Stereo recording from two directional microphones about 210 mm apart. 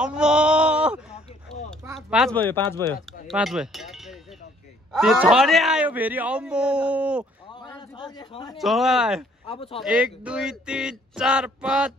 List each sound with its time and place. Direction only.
0.0 s sheep: 5° right (ahead or behind)
2.0 s a man's voice: centre (ahead or behind)
7.5 s a sound: 20° left (ahead or behind)
8.5 s a man's voice: centre (ahead or behind)
9.5 s speech: 25° left (ahead or behind)
9.8 s a man's voice: 5° right (ahead or behind)